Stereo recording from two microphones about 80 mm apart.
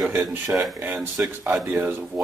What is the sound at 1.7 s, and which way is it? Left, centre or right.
Speech, right.